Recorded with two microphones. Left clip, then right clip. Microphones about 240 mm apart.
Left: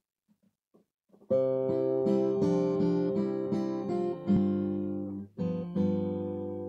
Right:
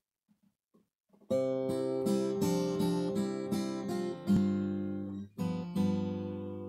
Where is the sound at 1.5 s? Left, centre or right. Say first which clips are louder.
Left 5 dB; centre.